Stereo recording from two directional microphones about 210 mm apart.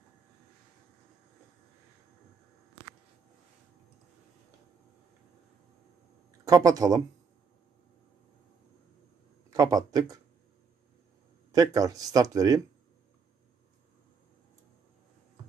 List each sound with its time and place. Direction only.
6.4 s speech: 15° right (ahead or behind)
9.5 s speech: 15° right (ahead or behind)
11.5 s speech: 15° right (ahead or behind)